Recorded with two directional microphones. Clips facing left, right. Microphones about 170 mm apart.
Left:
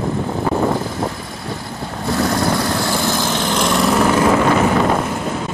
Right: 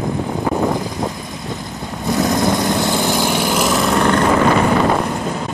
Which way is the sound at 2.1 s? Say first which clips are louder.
Right 2 dB; 20° right (ahead or behind).